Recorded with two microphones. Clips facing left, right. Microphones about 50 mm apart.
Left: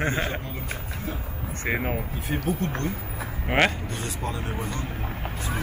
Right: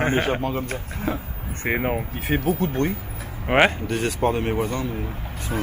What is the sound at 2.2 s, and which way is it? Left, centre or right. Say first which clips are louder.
Speech: right 6 dB; right.